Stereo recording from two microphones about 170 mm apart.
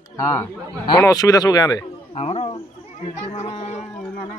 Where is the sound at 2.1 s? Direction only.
40° left (ahead or behind).